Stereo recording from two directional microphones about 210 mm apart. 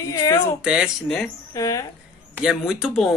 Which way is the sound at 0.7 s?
5° right (ahead or behind).